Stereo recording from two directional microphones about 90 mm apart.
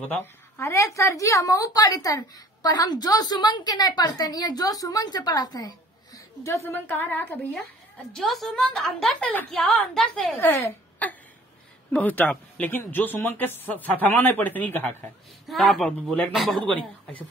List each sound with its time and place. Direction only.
0.0 s a woman's voice: 15° left (ahead or behind)
0.6 s a woman's voice: 35° left (ahead or behind)
8.1 s a woman's voice: 5° left (ahead or behind)
10.4 s a man's voice: 20° left (ahead or behind)
15.4 s a woman's voice: centre (ahead or behind)